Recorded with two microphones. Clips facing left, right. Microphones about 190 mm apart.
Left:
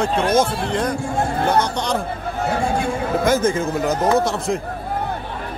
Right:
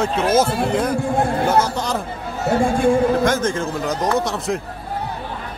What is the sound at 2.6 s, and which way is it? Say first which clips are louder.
Speech: right 8 dB; 50° right (ahead or behind).